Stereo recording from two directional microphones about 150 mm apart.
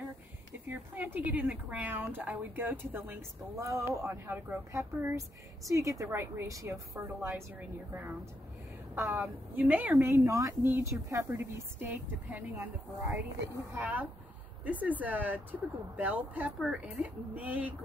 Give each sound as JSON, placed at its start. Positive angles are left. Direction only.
{"t": 0.7, "sound": "a woman's voice", "side_deg": -10}
{"t": 13.7, "sound": "a woman's voice", "side_deg": -10}